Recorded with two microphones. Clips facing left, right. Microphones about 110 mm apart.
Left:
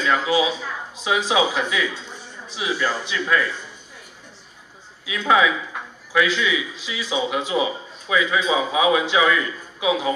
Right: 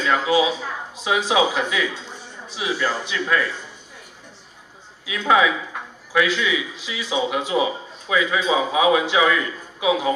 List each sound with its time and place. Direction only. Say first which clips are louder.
0.0 s a sound: even; 40° right (ahead or behind)
0.3 s a man's voice: right 2 dB; 30° right (ahead or behind)
5.2 s a man's voice: even; 30° right (ahead or behind)